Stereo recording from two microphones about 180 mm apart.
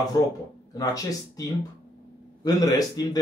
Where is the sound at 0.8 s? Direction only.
20° left (ahead or behind).